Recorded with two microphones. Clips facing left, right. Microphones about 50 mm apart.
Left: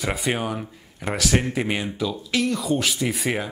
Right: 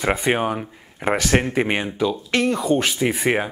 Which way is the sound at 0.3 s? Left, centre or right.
Centre.